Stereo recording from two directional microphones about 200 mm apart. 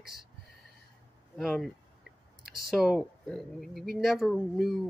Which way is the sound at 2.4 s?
50° right (ahead or behind).